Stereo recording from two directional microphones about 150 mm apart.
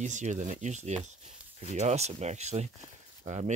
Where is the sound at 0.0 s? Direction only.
50° right (ahead or behind).